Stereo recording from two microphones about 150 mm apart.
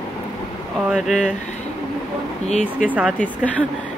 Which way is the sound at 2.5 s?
50° left (ahead or behind).